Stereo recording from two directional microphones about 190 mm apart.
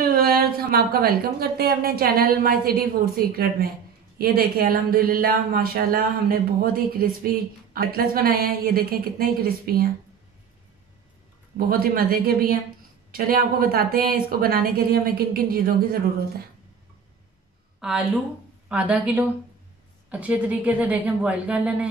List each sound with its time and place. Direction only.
0.0 s speech: 55° right (ahead or behind)
11.5 s speech: 50° right (ahead or behind)
17.7 s a woman's voice: 5° right (ahead or behind)